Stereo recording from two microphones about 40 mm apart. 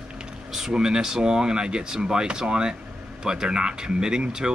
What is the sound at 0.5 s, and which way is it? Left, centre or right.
Speech, centre.